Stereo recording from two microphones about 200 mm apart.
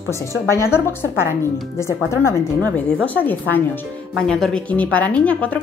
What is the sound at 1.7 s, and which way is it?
Speech, 15° left (ahead or behind).